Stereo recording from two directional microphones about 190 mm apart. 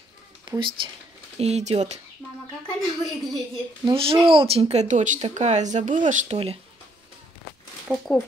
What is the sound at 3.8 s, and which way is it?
Speech, 30° right (ahead or behind).